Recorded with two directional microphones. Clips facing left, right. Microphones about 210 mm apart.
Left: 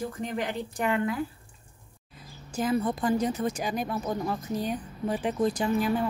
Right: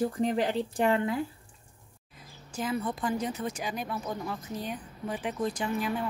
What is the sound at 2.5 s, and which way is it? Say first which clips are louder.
Speech: left 5 dB; 40° left (ahead or behind).